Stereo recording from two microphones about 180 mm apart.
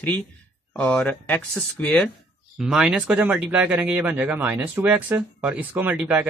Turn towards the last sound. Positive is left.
turn(degrees=-10)  # may be behind; listen again after turning